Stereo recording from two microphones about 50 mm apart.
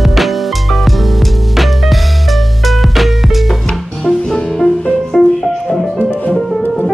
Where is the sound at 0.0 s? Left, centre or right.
Centre.